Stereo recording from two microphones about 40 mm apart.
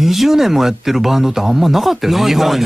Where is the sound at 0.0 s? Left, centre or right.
Centre.